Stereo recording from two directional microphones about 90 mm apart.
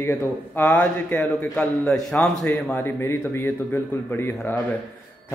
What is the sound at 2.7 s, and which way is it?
A man's voice, 25° left (ahead or behind).